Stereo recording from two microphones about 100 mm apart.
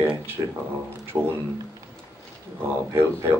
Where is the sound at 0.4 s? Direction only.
30° right (ahead or behind).